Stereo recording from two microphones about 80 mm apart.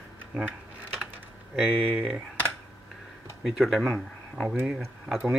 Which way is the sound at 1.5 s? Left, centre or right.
Centre.